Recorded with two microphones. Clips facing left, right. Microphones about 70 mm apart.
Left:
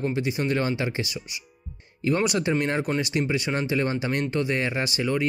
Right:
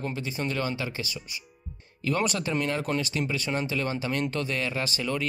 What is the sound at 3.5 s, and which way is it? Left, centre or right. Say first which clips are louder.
Speech: left 3 dB; left.